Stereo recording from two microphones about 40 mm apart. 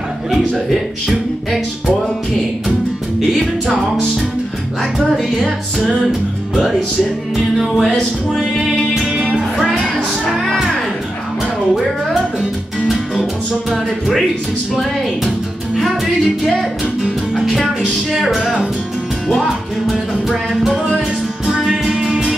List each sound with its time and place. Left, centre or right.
0.3 s speech: centre
3.2 s music: centre
5.4 s music: centre
6.5 s speech: centre
7.7 s music: centre
9.1 s music: right
9.6 s music: centre
11.7 s music: centre
17.0 s music: centre
18.3 s speech: centre
19.9 s music: centre